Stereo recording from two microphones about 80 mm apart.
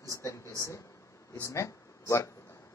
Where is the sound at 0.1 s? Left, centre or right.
Left.